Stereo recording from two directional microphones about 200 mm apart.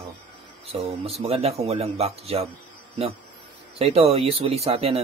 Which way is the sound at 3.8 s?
30° right (ahead or behind).